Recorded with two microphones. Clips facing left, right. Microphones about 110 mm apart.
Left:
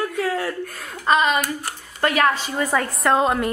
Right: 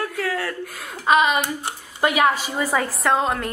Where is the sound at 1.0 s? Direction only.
5° right (ahead or behind).